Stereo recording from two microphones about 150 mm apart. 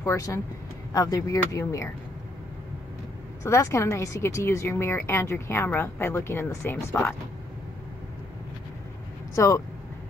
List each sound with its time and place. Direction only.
0.0 s speech: 20° left (ahead or behind)
3.4 s speech: 20° left (ahead or behind)
9.3 s speech: 20° left (ahead or behind)